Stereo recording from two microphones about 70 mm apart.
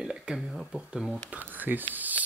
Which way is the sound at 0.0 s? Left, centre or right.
Centre.